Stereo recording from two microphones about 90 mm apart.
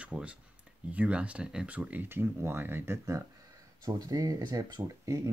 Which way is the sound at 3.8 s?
45° right (ahead or behind).